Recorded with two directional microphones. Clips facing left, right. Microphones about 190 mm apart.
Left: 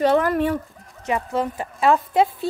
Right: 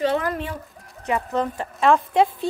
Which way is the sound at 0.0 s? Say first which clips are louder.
Left 5 dB; 50° left (ahead or behind).